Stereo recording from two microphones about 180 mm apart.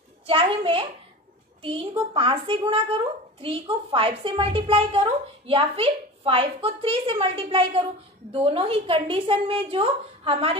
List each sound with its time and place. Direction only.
0.3 s speech: 30° right (ahead or behind)